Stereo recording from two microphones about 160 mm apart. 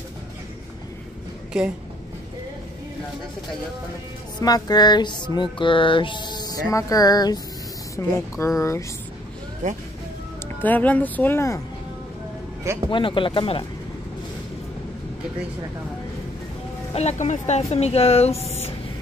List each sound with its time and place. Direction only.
1.5 s speech: 5° right (ahead or behind)
4.4 s music: 25° left (ahead or behind)
10.6 s speech: 10° left (ahead or behind)
12.9 s speech: 30° left (ahead or behind)
16.9 s speech: 45° left (ahead or behind)